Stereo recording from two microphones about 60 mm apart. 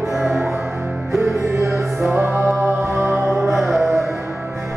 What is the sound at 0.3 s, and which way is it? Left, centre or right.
Music, right.